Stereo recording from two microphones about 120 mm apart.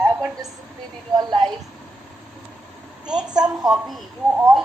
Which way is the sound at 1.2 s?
30° right (ahead or behind).